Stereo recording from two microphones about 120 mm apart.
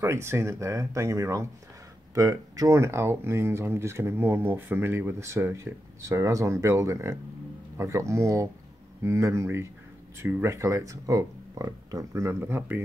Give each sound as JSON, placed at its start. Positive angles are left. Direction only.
{"t": 0.0, "sound": "speech", "side_deg": -20}